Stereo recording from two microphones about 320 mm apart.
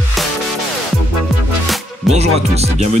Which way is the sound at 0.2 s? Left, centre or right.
Centre.